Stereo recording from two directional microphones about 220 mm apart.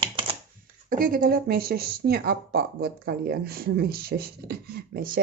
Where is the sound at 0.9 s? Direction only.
40° right (ahead or behind).